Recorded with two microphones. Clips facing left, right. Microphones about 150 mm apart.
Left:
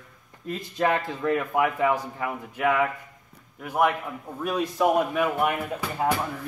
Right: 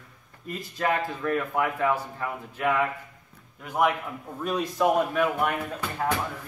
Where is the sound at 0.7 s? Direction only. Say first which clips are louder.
Left 2 dB; 20° left (ahead or behind).